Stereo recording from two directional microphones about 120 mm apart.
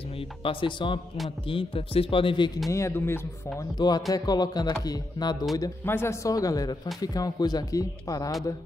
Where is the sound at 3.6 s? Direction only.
35° left (ahead or behind).